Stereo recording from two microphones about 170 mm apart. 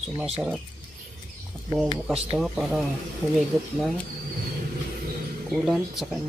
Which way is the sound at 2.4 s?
5° right (ahead or behind).